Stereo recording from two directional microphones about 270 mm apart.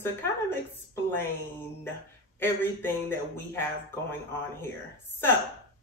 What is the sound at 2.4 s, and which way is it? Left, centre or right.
A woman's voice, centre.